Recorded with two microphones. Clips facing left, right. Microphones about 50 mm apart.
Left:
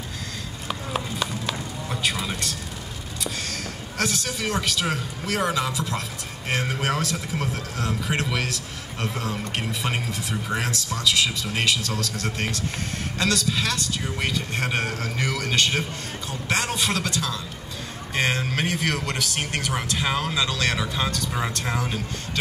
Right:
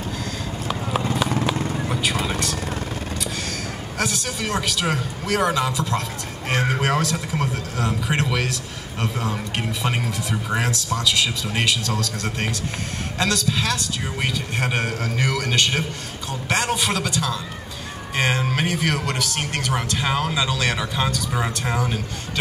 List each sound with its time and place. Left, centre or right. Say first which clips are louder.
1.4 s vehicle: right 7 dB; right
4.0 s a man's voice: right 1 dB; centre